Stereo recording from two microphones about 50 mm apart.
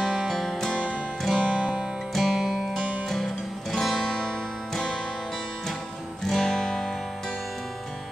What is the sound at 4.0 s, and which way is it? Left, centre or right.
Music, centre.